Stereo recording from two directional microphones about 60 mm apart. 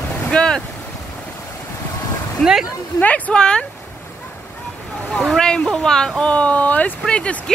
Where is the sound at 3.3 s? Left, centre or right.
Centre.